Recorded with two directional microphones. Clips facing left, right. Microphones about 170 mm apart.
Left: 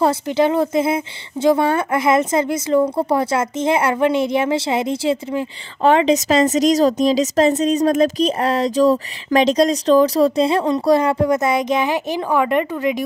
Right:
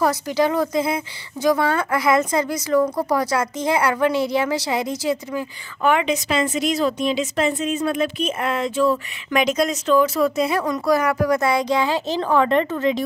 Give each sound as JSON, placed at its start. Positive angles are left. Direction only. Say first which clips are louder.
{"t": 0.0, "sound": "speech", "louder": "left 3 dB", "side_deg": 25}